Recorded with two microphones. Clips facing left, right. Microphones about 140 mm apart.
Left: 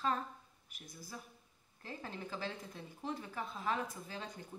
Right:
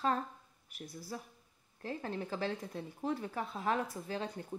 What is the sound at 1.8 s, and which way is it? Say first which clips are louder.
Speech: right 7 dB; 50° right (ahead or behind).